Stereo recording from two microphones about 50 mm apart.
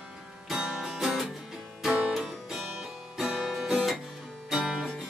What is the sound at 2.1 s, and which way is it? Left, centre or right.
Music, centre.